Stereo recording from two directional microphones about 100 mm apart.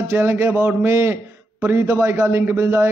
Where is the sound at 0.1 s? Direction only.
25° right (ahead or behind).